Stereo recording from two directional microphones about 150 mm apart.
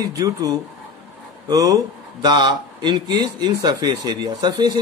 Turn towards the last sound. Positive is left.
turn(degrees=-25)  # may be behind; listen again after turning